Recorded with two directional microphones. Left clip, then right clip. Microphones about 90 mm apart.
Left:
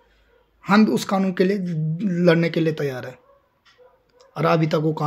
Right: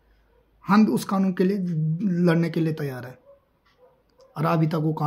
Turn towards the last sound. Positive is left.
turn(degrees=-30)  # may be behind; listen again after turning